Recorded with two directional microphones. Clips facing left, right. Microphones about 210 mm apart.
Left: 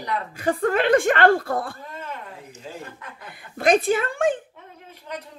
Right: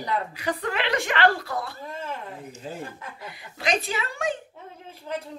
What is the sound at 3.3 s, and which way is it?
Speech, 50° left (ahead or behind).